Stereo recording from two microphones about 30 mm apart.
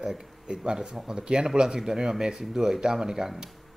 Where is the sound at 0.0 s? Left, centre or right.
Centre.